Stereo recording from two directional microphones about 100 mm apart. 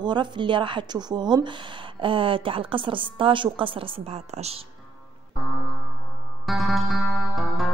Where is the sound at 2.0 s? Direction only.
60° right (ahead or behind); by 4.6 s 90° right.